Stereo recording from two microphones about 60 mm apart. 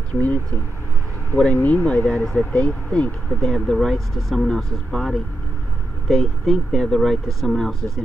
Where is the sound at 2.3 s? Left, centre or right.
Centre.